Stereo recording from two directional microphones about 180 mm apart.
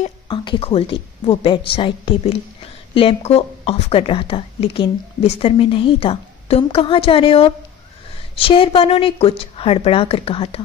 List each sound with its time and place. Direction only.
0.3 s a woman's voice: 30° left (ahead or behind)